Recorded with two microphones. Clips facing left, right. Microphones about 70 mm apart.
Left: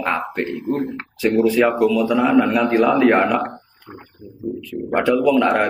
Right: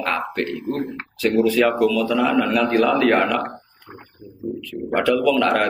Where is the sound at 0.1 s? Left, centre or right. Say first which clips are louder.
Left 1 dB; centre.